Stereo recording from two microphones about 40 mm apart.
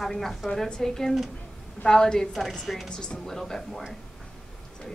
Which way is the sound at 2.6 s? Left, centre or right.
Centre.